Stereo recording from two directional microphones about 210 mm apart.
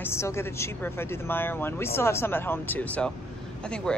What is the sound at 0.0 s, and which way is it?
Speech, 15° left (ahead or behind).